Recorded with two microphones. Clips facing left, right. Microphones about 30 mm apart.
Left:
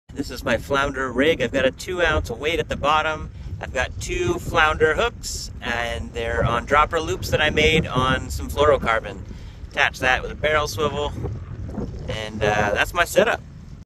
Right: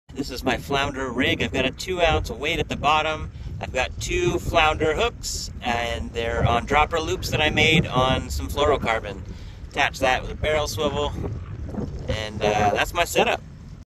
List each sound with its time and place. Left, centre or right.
0.2 s speech: centre
0.9 s speech: centre
1.2 s speech: centre
4.1 s speech: centre
4.5 s speech: centre
4.7 s speech: centre
6.7 s speech: centre
9.8 s speech: centre